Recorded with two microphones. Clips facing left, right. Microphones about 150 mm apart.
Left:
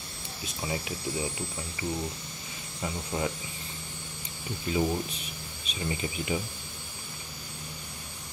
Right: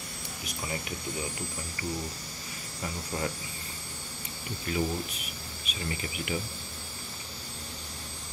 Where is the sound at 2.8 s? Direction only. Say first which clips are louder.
Left 3 dB; 20° left (ahead or behind).